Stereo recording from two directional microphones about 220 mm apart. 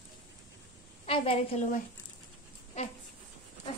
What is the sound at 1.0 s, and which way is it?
Speech, 25° left (ahead or behind).